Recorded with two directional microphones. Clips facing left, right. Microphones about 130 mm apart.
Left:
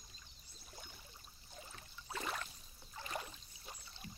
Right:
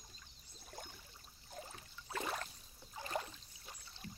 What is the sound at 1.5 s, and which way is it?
Rowboat, 50° right (ahead or behind).